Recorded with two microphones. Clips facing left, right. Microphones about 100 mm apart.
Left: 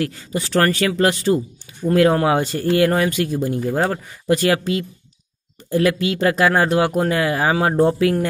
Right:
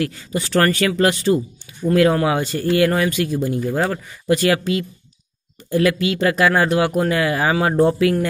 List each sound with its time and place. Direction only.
0.6 s speech: 20° left (ahead or behind)